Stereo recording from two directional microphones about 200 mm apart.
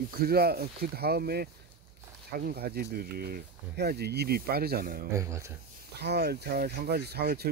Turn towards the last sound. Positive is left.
turn(degrees=-50)  # may be behind; listen again after turning